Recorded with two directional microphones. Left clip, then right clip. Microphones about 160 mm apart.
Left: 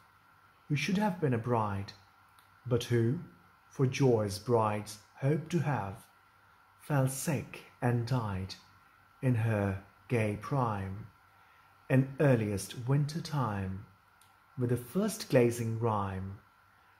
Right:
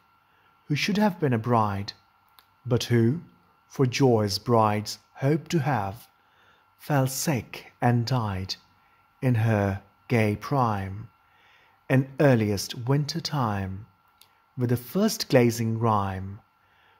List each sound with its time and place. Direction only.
0.7 s speech: 90° right
11.9 s speech: 90° right